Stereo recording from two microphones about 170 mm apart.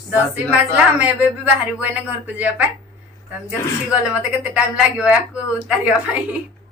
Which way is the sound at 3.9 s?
5° right (ahead or behind).